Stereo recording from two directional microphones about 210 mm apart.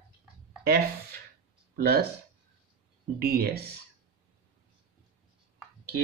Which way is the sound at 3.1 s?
45° right (ahead or behind).